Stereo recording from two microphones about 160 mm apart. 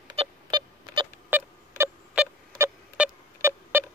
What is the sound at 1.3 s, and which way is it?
Rodents, 10° right (ahead or behind).